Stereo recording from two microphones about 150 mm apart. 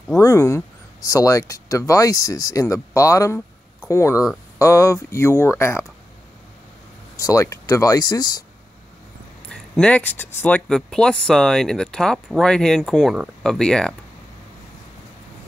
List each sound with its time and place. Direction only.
0.2 s speech: 20° left (ahead or behind)
7.2 s speech: 20° left (ahead or behind)
9.5 s speech: 5° left (ahead or behind)